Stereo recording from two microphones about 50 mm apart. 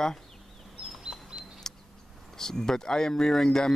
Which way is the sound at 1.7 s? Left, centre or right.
Centre.